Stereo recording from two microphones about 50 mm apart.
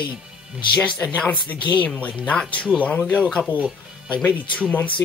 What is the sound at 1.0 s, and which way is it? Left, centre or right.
Speech, left.